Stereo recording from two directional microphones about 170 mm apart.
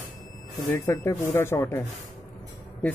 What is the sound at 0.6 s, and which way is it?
Speech, 15° left (ahead or behind).